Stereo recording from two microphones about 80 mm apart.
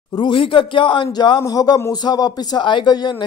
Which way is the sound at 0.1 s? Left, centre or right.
Left.